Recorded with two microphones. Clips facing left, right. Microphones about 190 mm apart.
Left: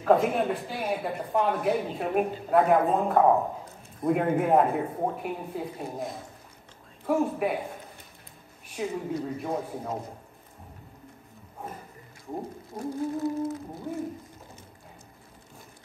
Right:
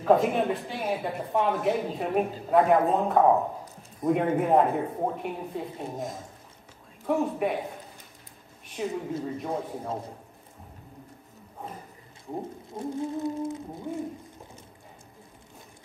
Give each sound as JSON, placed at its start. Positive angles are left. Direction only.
{"t": 0.0, "sound": "speech", "side_deg": 0}
{"t": 7.1, "sound": "speech", "side_deg": 0}
{"t": 8.7, "sound": "speech", "side_deg": 0}
{"t": 12.7, "sound": "humming", "side_deg": -20}